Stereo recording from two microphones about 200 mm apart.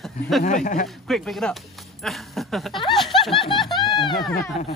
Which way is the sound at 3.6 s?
Centre (ahead or behind).